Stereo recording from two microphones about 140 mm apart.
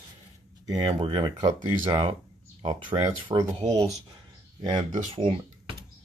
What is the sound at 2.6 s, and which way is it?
Speech, 45° right (ahead or behind).